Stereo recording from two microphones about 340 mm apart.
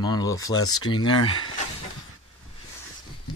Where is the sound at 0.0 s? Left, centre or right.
Centre.